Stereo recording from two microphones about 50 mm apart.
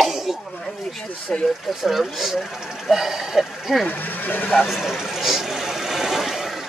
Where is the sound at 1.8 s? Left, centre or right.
Centre.